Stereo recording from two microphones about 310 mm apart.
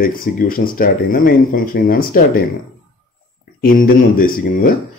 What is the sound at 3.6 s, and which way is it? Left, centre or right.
Speech, left.